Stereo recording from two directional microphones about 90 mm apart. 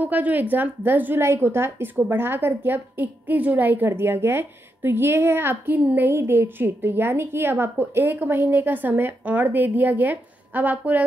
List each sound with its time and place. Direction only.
0.0 s a woman's voice: 20° right (ahead or behind)